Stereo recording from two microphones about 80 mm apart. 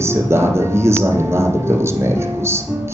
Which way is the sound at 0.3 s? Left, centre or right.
Right.